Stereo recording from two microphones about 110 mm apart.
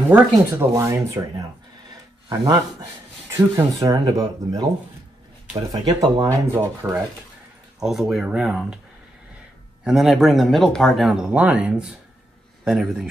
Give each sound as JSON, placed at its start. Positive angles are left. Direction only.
{"t": 0.1, "sound": "speech", "side_deg": -25}
{"t": 2.3, "sound": "speech", "side_deg": -30}
{"t": 5.7, "sound": "speech", "side_deg": -35}
{"t": 6.2, "sound": "speech", "side_deg": -20}
{"t": 7.8, "sound": "speech", "side_deg": 0}
{"t": 9.8, "sound": "speech", "side_deg": 0}